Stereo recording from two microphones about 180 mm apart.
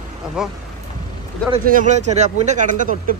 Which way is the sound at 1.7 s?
45° right (ahead or behind).